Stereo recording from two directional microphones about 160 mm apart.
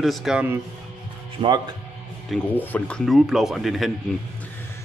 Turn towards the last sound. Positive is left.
turn(degrees=0)  # may be behind; listen again after turning